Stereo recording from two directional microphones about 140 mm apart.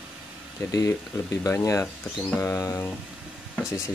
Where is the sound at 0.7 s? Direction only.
25° left (ahead or behind).